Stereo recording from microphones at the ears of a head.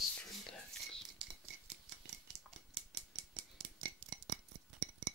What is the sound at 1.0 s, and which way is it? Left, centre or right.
Rattle, right.